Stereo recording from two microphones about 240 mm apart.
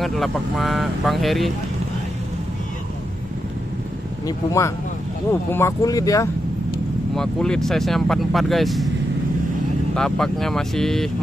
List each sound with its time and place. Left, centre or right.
0.0 s speech: centre
4.3 s speech: centre
7.2 s speech: centre
9.9 s speech: centre